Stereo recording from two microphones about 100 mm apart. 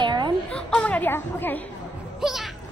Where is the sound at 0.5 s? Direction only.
10° left (ahead or behind).